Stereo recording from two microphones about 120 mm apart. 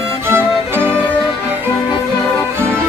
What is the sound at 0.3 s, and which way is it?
Music, 20° right (ahead or behind).